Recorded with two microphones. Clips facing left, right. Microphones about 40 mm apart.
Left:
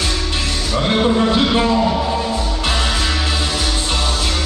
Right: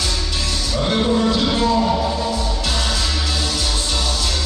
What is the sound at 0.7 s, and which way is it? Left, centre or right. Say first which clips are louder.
Music: left 3 dB; left.